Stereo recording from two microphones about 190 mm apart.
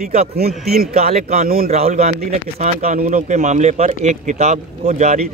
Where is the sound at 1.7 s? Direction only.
35° right (ahead or behind).